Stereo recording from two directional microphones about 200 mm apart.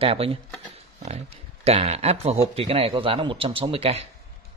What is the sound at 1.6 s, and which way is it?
A man's voice, 30° right (ahead or behind).